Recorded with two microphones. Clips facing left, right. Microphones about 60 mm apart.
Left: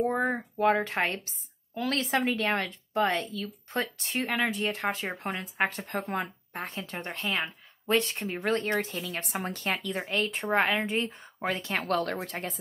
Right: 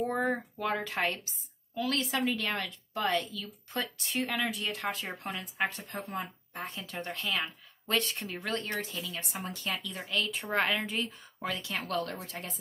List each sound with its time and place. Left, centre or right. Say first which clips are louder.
0.1 s a woman's voice: left 2 dB; centre
0.6 s a woman's voice: left 7 dB; left
1.8 s a woman's voice: left 3 dB; left
5.7 s speech: left 6 dB; left
6.6 s a woman's voice: left 2 dB; left
9.0 s a woman's voice: left 5 dB; left
10.5 s a woman's voice: left 4 dB; centre
11.1 s speech: left 5 dB; left
11.7 s a woman's voice: left 6 dB; left